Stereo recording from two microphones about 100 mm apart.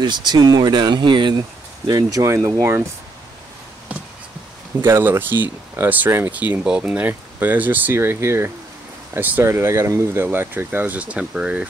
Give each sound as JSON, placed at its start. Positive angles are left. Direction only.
{"t": 0.0, "sound": "speech", "side_deg": -45}
{"t": 1.9, "sound": "speech", "side_deg": -35}
{"t": 4.8, "sound": "speech", "side_deg": -25}